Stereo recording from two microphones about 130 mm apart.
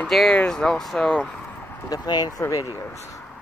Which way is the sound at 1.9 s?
30° left (ahead or behind).